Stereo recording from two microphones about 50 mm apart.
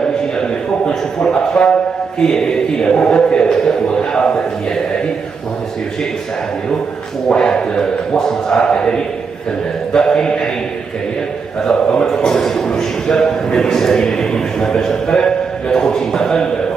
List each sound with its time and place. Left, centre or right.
0.0 s a sound: centre
7.2 s a man's voice: centre
11.6 s a man's voice: centre